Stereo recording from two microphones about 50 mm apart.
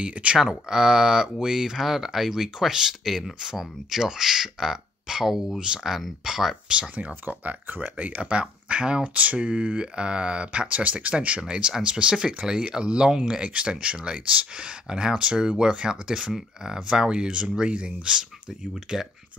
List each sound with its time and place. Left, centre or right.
0.0 s speech: right
0.4 s speech: centre; by 7.9 s right
8.2 s speech: right
9.0 s speech: right; by 19.0 s centre